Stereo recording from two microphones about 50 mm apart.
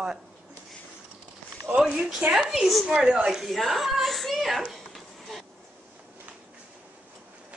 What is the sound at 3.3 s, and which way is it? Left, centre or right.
Speech, centre.